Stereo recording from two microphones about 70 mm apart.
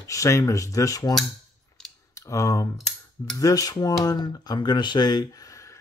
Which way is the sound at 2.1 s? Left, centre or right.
Left.